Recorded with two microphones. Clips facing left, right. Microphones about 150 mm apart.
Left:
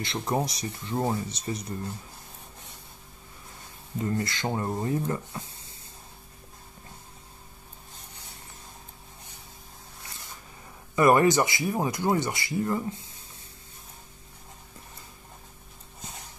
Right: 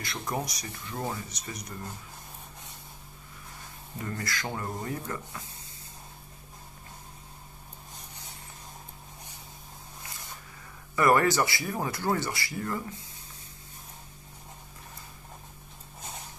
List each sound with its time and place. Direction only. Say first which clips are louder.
0.0 s speech: left 5 dB; 25° left (ahead or behind)
4.0 s speech: left 6 dB; 25° left (ahead or behind)
11.0 s speech: left 3 dB; 20° left (ahead or behind)